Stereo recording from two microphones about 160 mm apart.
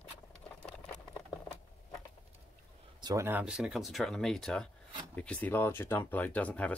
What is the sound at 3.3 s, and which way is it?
Speech, 10° right (ahead or behind).